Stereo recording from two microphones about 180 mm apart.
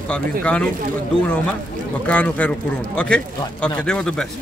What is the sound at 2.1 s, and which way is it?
A man's voice, 5° left (ahead or behind).